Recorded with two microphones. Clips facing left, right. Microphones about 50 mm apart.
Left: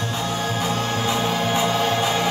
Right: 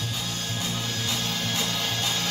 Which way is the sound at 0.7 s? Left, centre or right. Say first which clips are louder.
Left 7 dB; left.